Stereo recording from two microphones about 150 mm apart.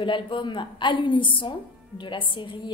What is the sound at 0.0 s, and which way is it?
A woman's voice, 30° left (ahead or behind).